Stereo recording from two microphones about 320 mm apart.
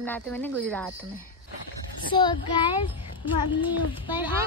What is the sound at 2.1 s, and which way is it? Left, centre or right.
A child's voice, centre.